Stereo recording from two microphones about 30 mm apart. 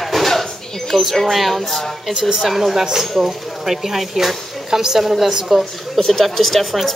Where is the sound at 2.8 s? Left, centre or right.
Centre.